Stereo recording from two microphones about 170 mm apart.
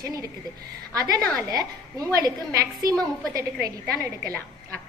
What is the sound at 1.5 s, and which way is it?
A woman's voice, 20° right (ahead or behind).